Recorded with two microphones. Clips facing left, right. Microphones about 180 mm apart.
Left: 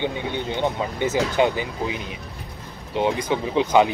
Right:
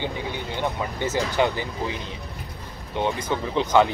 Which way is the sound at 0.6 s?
15° left (ahead or behind).